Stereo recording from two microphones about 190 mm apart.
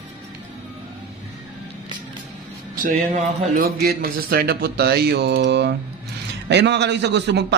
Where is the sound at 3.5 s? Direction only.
50° right (ahead or behind).